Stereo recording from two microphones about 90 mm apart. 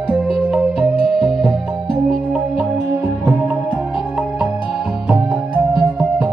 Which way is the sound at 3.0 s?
20° right (ahead or behind).